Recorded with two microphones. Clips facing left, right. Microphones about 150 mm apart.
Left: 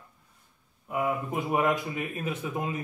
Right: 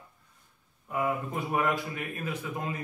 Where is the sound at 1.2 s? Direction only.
20° left (ahead or behind).